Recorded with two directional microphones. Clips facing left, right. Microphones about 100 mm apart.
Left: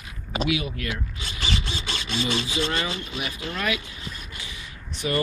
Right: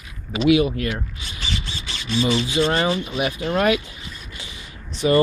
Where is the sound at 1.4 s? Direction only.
65° left (ahead or behind).